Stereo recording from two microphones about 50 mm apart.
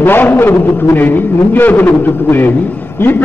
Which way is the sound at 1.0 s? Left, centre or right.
Left.